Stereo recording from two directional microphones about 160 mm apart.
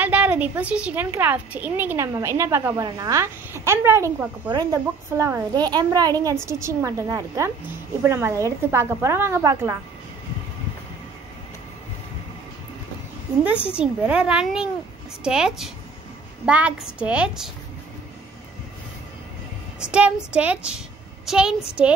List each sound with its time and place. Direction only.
0.0 s a woman's voice: 10° right (ahead or behind)
13.7 s a woman's voice: 5° right (ahead or behind)
19.8 s a woman's voice: 5° right (ahead or behind)